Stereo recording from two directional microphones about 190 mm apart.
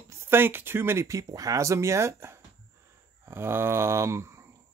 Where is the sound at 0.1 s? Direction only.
10° right (ahead or behind).